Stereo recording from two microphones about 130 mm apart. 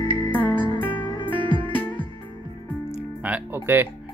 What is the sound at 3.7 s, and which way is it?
Music, 15° right (ahead or behind).